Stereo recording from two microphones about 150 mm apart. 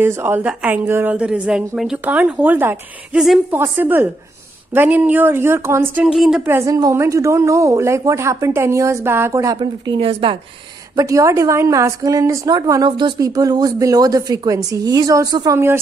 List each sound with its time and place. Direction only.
0.0 s a woman's voice: 15° right (ahead or behind)
3.5 s a woman's voice: 15° right (ahead or behind)
6.1 s a woman's voice: centre (ahead or behind)
6.4 s a woman's voice: 20° right (ahead or behind); by 10.3 s 40° right (ahead or behind)
11.0 s a woman's voice: 20° right (ahead or behind)